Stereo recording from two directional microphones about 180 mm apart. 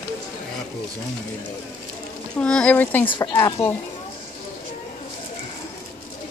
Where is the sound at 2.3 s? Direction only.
5° left (ahead or behind).